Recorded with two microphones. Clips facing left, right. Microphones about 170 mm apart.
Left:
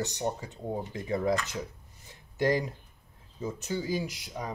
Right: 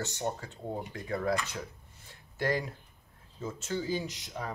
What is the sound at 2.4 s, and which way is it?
Speech, 20° left (ahead or behind).